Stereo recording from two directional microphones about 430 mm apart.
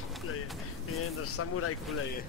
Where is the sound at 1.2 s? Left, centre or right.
Left.